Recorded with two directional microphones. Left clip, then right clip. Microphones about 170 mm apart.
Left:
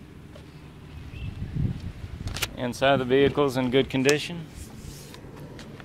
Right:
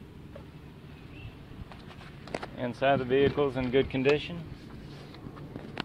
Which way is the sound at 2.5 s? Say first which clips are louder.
Left 4 dB; 30° left (ahead or behind).